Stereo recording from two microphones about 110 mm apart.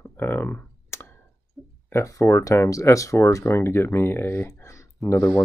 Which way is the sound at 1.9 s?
25° left (ahead or behind).